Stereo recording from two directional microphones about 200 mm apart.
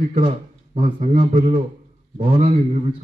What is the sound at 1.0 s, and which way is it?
A man's voice, 40° right (ahead or behind).